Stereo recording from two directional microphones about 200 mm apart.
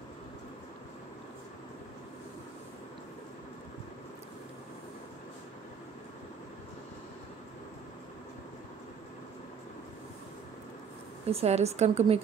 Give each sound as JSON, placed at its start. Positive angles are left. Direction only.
{"t": 11.2, "sound": "a woman's voice", "side_deg": -30}